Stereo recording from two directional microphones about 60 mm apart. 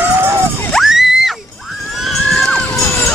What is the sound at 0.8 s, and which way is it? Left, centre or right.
Screaming, centre.